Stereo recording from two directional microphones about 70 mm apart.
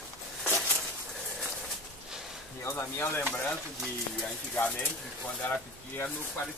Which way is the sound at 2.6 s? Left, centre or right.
Left.